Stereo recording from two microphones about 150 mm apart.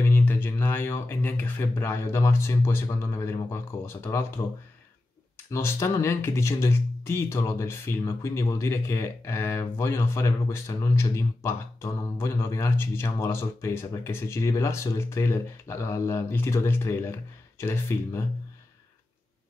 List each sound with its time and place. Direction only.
0.0 s speech: 15° left (ahead or behind)
5.5 s speech: 20° left (ahead or behind)